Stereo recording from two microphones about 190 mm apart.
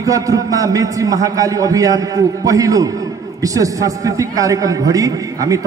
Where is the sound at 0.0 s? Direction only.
20° right (ahead or behind).